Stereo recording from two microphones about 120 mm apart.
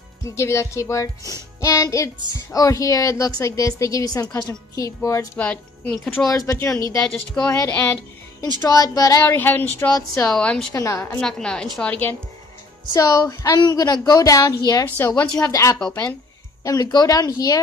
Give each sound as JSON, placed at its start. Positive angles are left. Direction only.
{"t": 0.3, "sound": "a woman's voice", "side_deg": 25}
{"t": 5.4, "sound": "a woman's voice", "side_deg": 10}
{"t": 6.2, "sound": "a woman's voice", "side_deg": 25}
{"t": 9.4, "sound": "a woman's voice", "side_deg": 15}
{"t": 9.9, "sound": "a woman's voice", "side_deg": 30}
{"t": 10.3, "sound": "a woman's voice", "side_deg": 10}
{"t": 10.7, "sound": "a woman's voice", "side_deg": 25}
{"t": 11.1, "sound": "a woman's voice", "side_deg": 5}
{"t": 12.9, "sound": "a woman's voice", "side_deg": 30}